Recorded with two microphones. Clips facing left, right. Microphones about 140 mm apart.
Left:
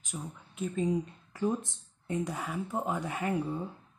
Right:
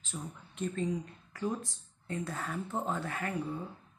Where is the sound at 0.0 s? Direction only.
10° left (ahead or behind).